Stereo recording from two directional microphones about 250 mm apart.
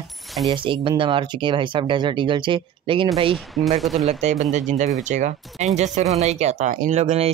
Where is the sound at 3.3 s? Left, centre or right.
Centre.